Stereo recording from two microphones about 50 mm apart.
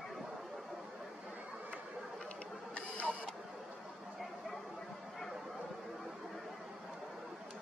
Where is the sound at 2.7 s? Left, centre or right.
Left.